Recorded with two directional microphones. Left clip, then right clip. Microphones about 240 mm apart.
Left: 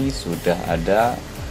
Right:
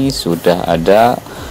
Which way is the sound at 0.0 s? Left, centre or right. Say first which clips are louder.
Right 9 dB; right.